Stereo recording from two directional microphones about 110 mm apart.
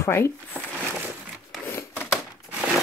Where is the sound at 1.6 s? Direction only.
20° left (ahead or behind).